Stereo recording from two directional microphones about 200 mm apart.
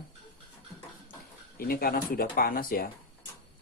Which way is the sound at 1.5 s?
45° left (ahead or behind).